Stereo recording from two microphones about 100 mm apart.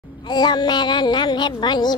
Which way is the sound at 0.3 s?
45° left (ahead or behind).